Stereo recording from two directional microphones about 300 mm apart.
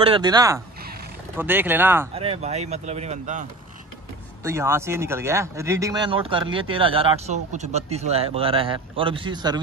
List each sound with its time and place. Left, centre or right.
0.0 s a man's voice: centre
2.1 s speech: centre
4.5 s a man's voice: centre